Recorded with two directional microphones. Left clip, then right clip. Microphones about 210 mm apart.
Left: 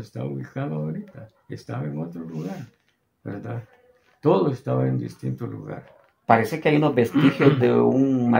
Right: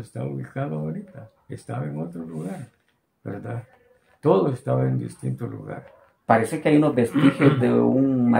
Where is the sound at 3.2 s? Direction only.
15° right (ahead or behind).